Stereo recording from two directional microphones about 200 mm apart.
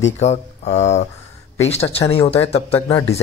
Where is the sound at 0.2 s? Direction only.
35° left (ahead or behind).